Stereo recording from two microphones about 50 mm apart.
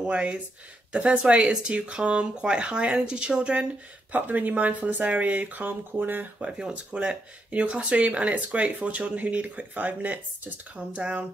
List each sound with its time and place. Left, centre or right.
0.0 s speech: centre
4.1 s speech: right
6.4 s speech: centre; by 10.2 s right